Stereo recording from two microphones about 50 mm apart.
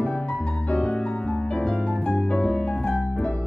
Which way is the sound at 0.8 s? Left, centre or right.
Left.